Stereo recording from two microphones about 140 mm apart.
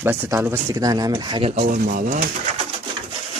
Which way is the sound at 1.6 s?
70° right (ahead or behind).